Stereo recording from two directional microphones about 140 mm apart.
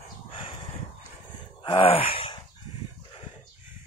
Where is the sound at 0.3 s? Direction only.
40° left (ahead or behind).